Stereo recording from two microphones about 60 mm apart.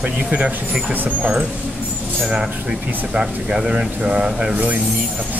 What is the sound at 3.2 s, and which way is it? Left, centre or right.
Speech, centre.